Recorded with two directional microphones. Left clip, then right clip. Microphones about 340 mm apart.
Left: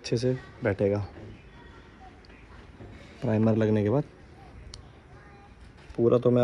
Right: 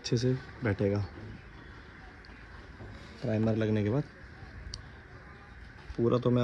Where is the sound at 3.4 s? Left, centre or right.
Left.